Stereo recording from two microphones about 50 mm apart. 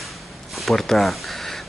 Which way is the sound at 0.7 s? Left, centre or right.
Centre.